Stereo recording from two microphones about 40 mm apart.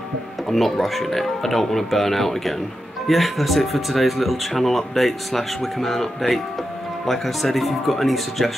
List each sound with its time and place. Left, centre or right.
0.5 s speech: centre